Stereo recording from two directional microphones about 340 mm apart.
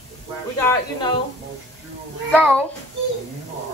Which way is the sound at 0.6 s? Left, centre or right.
Centre.